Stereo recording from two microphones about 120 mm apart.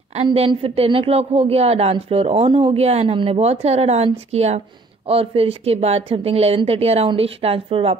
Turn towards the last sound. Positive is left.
turn(degrees=-50)  # may be behind; listen again after turning